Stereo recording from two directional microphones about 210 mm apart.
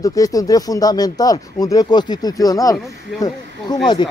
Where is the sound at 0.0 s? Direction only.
15° left (ahead or behind).